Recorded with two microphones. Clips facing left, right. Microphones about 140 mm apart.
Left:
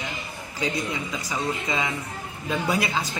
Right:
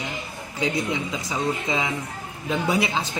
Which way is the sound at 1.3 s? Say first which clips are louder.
Right 2 dB; 20° right (ahead or behind).